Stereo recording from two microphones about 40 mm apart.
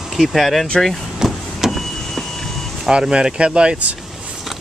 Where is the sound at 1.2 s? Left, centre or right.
Centre.